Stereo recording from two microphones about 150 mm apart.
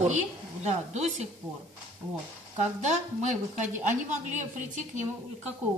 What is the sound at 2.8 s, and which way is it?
A woman's voice, 50° right (ahead or behind).